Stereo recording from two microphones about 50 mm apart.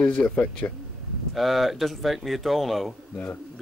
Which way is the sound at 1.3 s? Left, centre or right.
Centre.